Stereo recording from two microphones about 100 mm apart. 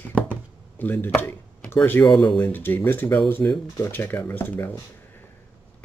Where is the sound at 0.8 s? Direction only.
20° left (ahead or behind).